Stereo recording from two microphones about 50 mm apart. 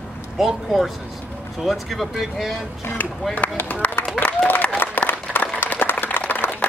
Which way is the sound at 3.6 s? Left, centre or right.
Left.